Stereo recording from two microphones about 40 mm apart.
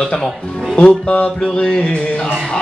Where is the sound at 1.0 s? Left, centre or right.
Left.